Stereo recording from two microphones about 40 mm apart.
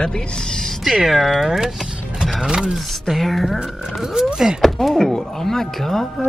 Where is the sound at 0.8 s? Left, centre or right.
Centre.